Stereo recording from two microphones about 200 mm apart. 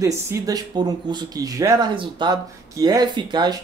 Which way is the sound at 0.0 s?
15° right (ahead or behind).